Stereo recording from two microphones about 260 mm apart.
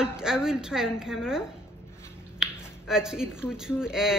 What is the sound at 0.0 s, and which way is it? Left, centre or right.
Speech, centre.